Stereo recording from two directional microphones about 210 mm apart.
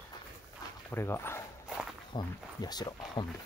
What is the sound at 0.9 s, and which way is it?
Speech, 10° left (ahead or behind).